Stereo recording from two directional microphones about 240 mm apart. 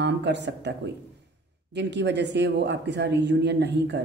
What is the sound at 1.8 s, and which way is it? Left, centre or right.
Speech, right.